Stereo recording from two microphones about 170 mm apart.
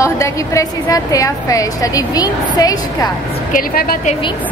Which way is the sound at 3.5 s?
60° left (ahead or behind).